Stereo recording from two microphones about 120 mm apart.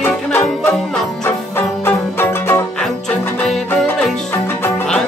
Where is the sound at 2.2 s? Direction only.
20° left (ahead or behind).